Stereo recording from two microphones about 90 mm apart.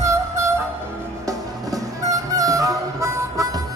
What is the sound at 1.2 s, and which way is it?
Music, 40° right (ahead or behind).